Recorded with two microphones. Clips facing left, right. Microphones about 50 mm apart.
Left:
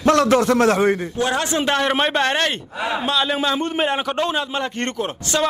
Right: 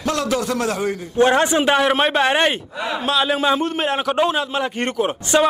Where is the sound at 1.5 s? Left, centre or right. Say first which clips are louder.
Right 3 dB; centre.